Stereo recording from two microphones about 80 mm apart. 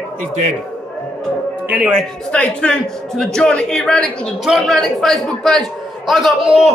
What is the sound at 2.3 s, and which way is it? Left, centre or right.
A man's voice, centre.